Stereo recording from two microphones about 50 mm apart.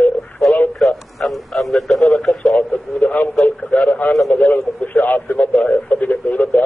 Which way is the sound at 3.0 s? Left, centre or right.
Left.